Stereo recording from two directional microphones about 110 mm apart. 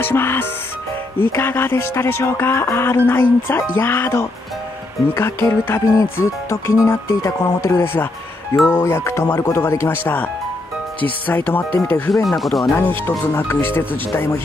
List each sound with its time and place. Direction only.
0.0 s music: 20° left (ahead or behind)
1.2 s speech: 20° left (ahead or behind)
11.8 s speech: 5° left (ahead or behind)
12.7 s speech: 15° left (ahead or behind)